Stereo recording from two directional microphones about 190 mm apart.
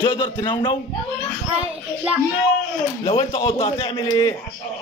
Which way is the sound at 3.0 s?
25° left (ahead or behind).